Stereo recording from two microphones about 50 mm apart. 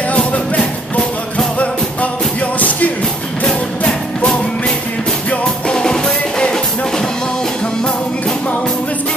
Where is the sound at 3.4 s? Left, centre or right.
Centre.